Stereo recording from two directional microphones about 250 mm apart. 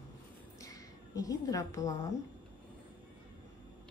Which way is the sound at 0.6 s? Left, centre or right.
Centre.